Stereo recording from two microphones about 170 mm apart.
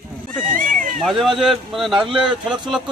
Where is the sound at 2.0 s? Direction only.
30° right (ahead or behind).